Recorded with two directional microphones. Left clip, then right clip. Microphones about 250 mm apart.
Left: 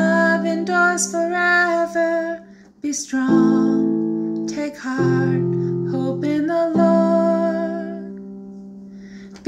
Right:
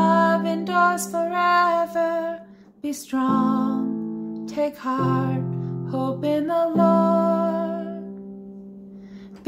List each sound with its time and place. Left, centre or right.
0.0 s music: centre
3.7 s music: left
4.5 s music: centre